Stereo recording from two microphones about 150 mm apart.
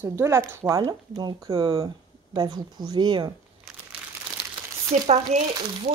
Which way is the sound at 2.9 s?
30° right (ahead or behind).